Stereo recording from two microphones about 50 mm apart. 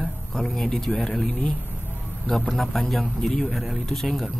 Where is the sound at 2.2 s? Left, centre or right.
Centre.